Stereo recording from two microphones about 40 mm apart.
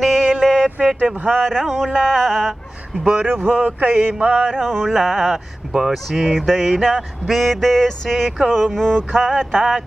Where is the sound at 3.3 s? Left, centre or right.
Centre.